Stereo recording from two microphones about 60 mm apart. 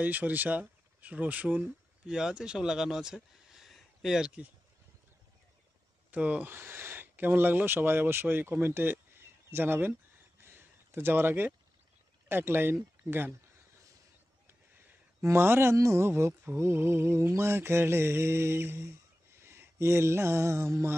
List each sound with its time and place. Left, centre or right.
0.0 s speech: right
1.6 s speech: centre
3.7 s a sound: centre
6.1 s speech: right
6.4 s speech: right
15.2 s mantra: right
15.7 s speech: right
16.1 s mantra: right
19.4 s a sound: right